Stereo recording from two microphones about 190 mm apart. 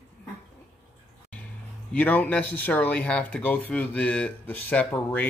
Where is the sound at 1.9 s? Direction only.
10° left (ahead or behind).